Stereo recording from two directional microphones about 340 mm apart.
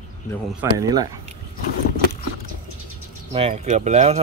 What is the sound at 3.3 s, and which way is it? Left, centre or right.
Speech, centre.